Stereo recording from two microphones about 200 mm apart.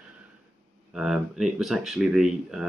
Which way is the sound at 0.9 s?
5° right (ahead or behind).